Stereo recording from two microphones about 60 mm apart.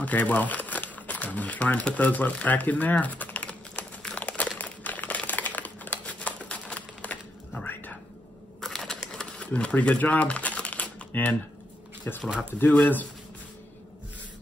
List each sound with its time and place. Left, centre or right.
0.0 s speech: left
3.4 s a sound: centre
8.5 s typewriter: centre; by 10.9 s left
11.1 s speech: left